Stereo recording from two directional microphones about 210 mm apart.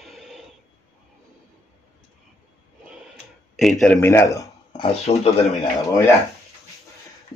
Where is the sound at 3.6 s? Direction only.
5° left (ahead or behind).